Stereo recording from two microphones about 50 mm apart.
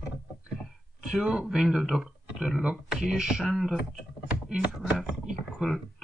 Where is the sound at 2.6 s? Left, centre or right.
Right.